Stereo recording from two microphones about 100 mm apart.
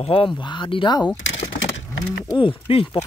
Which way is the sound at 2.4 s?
65° left (ahead or behind).